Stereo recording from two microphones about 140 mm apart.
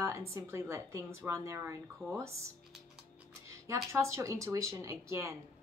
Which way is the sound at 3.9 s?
20° right (ahead or behind).